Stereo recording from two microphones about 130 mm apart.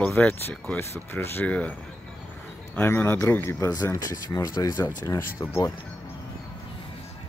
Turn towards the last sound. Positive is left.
turn(degrees=20)  # may be behind; listen again after turning